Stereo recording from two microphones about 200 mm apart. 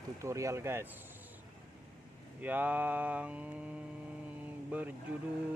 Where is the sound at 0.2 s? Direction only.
15° right (ahead or behind).